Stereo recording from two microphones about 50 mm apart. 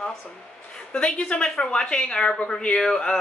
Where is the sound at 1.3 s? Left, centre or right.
Left.